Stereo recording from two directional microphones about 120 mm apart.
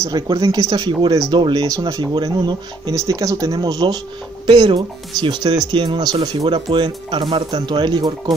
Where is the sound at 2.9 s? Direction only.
25° right (ahead or behind).